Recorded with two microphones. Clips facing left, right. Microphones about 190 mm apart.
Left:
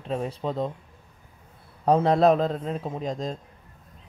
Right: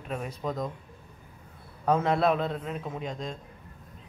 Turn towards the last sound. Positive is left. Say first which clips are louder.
# left 5 dB
turn(degrees=35)  # may be behind; listen again after turning